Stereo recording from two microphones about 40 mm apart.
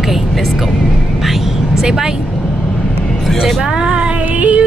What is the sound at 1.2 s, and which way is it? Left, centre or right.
Vehicle, centre.